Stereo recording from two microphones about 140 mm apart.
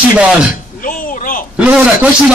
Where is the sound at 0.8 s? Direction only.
80° left.